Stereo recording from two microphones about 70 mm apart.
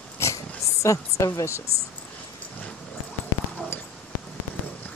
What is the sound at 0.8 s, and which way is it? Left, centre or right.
Speech, left.